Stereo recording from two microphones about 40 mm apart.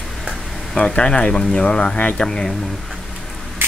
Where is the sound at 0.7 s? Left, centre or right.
Left.